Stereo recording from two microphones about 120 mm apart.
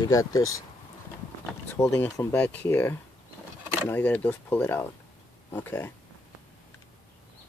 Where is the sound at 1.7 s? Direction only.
25° left (ahead or behind).